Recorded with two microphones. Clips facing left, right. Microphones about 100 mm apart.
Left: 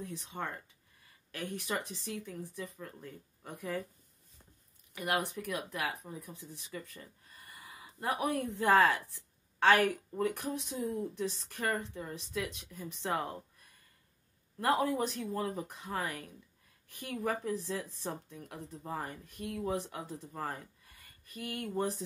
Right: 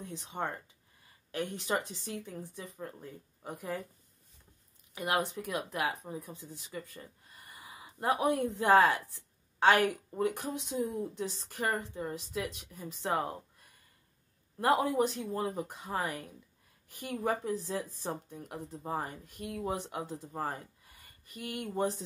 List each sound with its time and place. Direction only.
0.0 s a woman's voice: 20° right (ahead or behind)
4.9 s a woman's voice: 20° right (ahead or behind)
14.6 s a woman's voice: 20° right (ahead or behind)